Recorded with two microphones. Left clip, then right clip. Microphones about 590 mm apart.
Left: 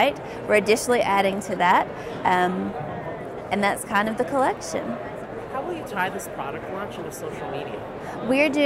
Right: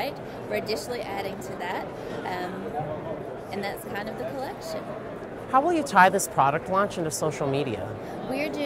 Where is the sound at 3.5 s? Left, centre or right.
Left.